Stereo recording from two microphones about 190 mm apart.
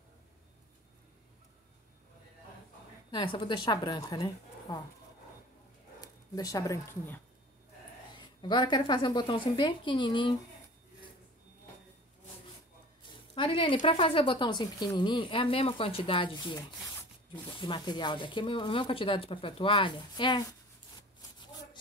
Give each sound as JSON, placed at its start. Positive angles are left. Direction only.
{"t": 3.1, "sound": "speech", "side_deg": 25}
{"t": 5.9, "sound": "speech", "side_deg": 20}
{"t": 8.2, "sound": "speech", "side_deg": 25}
{"t": 13.0, "sound": "a sound", "side_deg": 25}
{"t": 13.8, "sound": "speech", "side_deg": 25}